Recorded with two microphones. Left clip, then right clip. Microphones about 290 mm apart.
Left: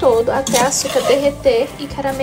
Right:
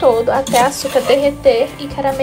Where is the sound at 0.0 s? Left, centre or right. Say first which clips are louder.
Right 1 dB; centre.